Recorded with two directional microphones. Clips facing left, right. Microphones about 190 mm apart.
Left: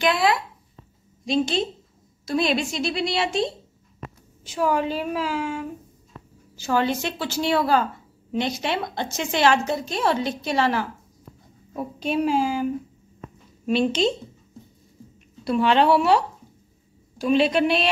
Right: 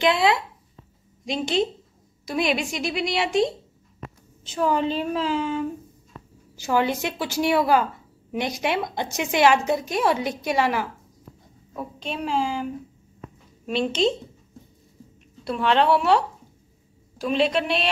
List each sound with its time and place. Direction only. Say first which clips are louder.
0.0 s a woman's voice: right 1 dB; 20° right (ahead or behind)
4.5 s a woman's voice: even; 10° left (ahead or behind)
6.5 s a woman's voice: even; 15° right (ahead or behind)
11.7 s a woman's voice: left 6 dB; 10° left (ahead or behind)
13.7 s a woman's voice: left 1 dB; centre (ahead or behind)
15.4 s a woman's voice: left 2 dB; 5° left (ahead or behind)
17.2 s a woman's voice: left 3 dB; centre (ahead or behind)